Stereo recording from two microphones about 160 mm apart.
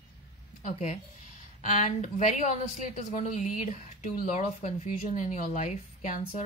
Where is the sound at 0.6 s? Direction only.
45° left (ahead or behind).